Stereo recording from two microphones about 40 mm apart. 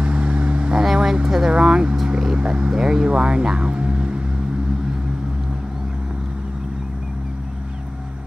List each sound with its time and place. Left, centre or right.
0.0 s vehicle: right
0.7 s vehicle: centre
1.5 s speech: right